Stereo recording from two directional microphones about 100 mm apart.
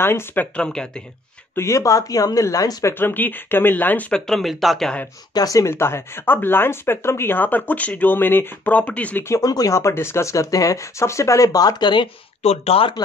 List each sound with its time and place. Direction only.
0.0 s speech: 20° left (ahead or behind)
1.5 s speech: 30° left (ahead or behind)
2.9 s speech: 20° left (ahead or behind)
4.3 s speech: centre (ahead or behind)
5.3 s speech: 35° left (ahead or behind); by 9.2 s 15° left (ahead or behind)
9.3 s speech: 35° left (ahead or behind)
12.4 s speech: 80° left